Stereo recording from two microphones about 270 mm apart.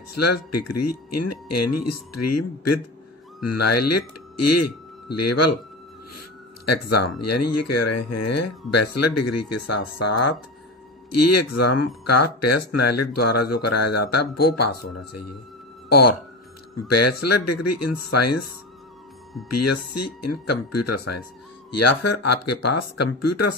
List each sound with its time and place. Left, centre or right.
0.1 s speech: left
19.5 s speech: left